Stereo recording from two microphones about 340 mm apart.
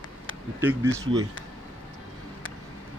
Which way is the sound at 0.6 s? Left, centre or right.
Centre.